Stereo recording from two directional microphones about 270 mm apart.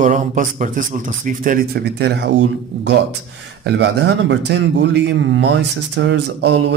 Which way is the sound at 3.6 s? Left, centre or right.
Right.